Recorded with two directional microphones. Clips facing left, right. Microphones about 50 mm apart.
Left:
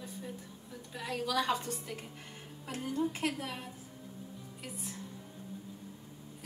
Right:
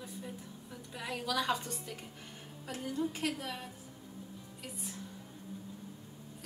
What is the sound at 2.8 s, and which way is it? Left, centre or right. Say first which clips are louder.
Speech: left 2 dB; centre.